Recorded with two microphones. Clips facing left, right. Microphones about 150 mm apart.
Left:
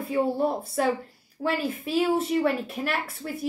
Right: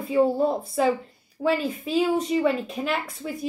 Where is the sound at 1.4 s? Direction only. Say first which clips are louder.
Right 4 dB; 5° right (ahead or behind).